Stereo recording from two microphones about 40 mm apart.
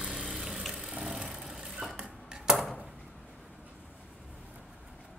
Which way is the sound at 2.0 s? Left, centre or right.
Centre.